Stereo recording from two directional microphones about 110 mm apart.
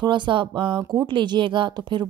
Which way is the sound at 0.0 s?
45° right (ahead or behind).